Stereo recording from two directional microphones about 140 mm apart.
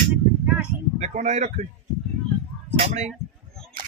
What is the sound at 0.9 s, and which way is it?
Speech, 55° right (ahead or behind).